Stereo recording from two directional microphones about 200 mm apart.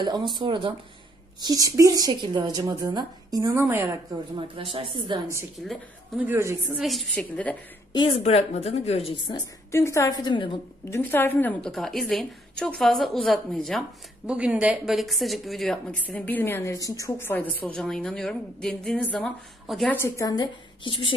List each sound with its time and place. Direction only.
0.0 s a woman's voice: 20° right (ahead or behind)
6.8 s a woman's voice: centre (ahead or behind)
7.9 s speech: 25° left (ahead or behind)
9.7 s a woman's voice: 15° left (ahead or behind)
11.0 s a woman's voice: 10° left (ahead or behind)
20.0 s a woman's voice: 15° left (ahead or behind)